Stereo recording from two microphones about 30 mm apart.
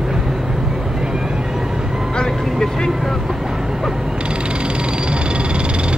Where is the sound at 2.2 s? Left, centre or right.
Left.